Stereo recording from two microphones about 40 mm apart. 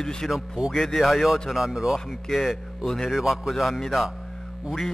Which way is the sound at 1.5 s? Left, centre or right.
Centre.